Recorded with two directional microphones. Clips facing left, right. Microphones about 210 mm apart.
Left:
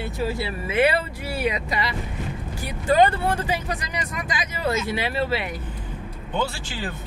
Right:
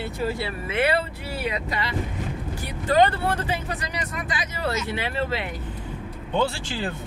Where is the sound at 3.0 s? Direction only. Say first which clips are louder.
Right 1 dB; 10° left (ahead or behind).